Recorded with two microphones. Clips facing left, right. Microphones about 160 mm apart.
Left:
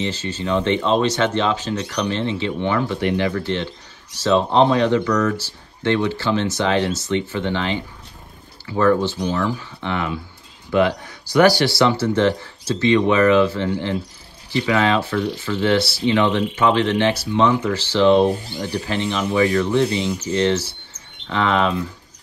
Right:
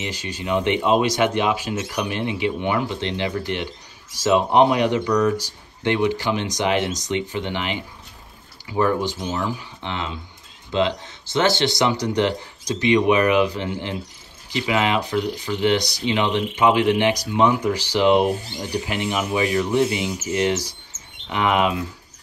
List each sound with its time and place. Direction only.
0.0 s speech: 15° right (ahead or behind)